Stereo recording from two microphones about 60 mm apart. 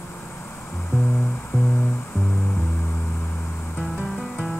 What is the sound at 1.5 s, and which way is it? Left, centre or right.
Music, left.